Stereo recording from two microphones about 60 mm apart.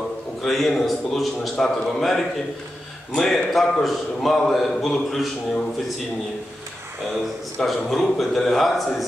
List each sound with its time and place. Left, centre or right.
0.4 s a man's voice: centre
7.6 s a man's voice: centre